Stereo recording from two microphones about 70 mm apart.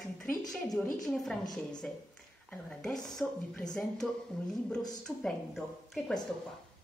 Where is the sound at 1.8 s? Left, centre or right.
Centre.